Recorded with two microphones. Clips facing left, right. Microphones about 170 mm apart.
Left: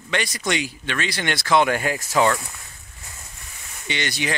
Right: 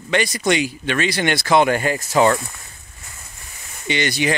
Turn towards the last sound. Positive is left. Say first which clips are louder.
# right 6 dB
turn(degrees=-5)  # may be behind; listen again after turning